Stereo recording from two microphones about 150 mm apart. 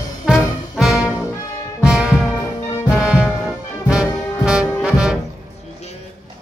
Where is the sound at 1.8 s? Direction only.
5° right (ahead or behind).